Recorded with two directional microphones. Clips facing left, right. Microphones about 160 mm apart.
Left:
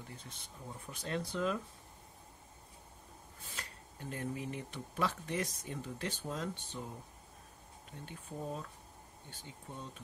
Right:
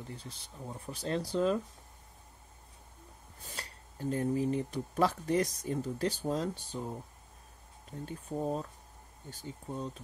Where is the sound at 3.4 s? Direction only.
40° right (ahead or behind).